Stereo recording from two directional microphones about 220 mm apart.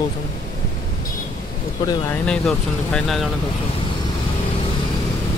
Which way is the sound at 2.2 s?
5° left (ahead or behind).